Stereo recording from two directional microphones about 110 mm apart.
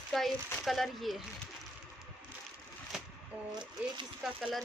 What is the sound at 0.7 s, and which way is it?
Speech, centre (ahead or behind).